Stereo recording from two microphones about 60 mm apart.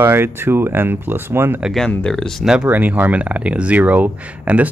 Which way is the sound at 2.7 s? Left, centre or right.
Right.